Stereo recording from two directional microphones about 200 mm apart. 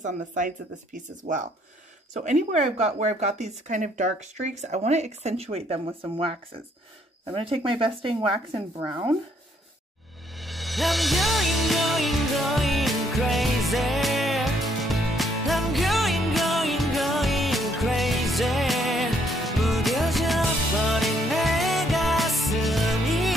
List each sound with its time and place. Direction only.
0.0 s speech: 40° right (ahead or behind)
7.3 s speech: 25° right (ahead or behind)
10.3 s music: centre (ahead or behind)